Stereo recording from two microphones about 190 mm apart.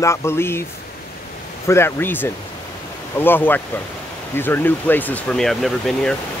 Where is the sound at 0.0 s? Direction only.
15° left (ahead or behind).